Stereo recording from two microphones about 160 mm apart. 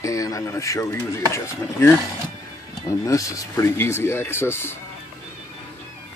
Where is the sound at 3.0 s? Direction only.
20° left (ahead or behind).